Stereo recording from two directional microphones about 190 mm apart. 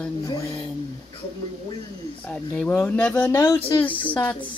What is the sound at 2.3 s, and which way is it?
Speech, 5° left (ahead or behind).